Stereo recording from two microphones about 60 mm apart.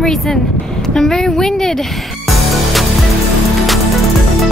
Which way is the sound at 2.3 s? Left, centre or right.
Centre.